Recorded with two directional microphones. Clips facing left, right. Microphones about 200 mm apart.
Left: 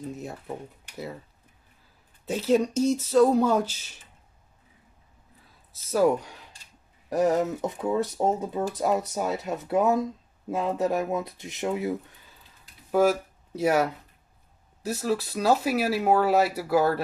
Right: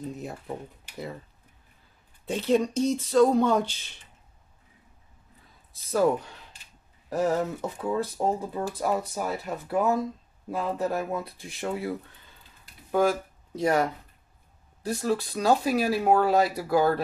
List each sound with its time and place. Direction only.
0.1 s speech: centre (ahead or behind)
2.2 s speech: 5° left (ahead or behind)
5.7 s speech: 5° left (ahead or behind)
12.9 s speech: 5° left (ahead or behind)